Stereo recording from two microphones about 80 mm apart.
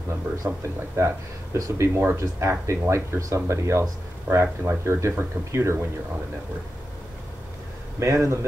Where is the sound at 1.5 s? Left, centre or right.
Right.